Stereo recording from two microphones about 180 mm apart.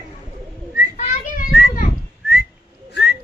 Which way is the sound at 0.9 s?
45° left (ahead or behind).